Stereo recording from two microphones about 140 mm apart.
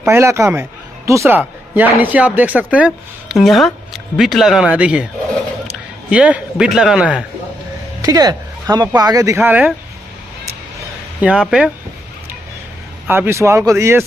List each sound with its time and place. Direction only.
0.1 s speech: 20° right (ahead or behind)
6.0 s speech: 10° right (ahead or behind)
8.0 s speech: 25° right (ahead or behind); by 9.8 s 10° right (ahead or behind)
11.1 s speech: 5° right (ahead or behind)
13.0 s speech: 15° right (ahead or behind)